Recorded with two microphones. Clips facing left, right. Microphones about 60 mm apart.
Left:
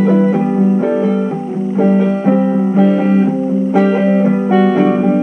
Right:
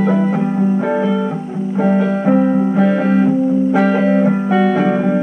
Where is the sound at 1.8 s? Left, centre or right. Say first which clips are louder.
Left 2 dB; centre.